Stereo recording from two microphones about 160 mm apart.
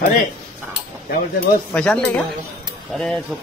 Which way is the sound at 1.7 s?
5° left (ahead or behind).